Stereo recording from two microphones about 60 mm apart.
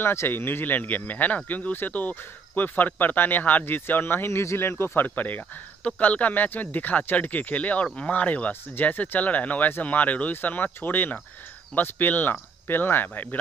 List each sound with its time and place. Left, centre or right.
0.0 s speech: left